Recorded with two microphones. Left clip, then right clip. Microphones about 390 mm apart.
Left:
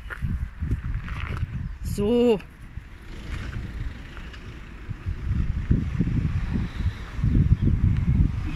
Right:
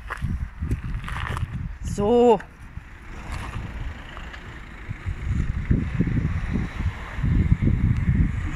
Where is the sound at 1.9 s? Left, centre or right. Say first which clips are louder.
Right 4 dB; centre.